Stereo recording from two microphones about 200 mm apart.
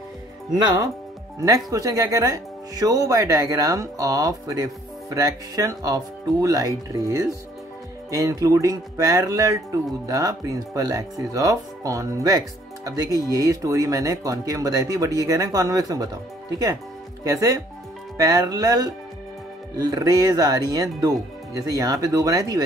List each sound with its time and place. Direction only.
1.4 s speech: 15° right (ahead or behind)
17.2 s speech: 15° right (ahead or behind)